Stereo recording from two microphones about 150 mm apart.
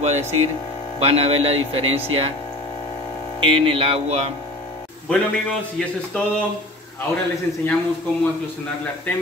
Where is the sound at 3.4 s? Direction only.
35° right (ahead or behind).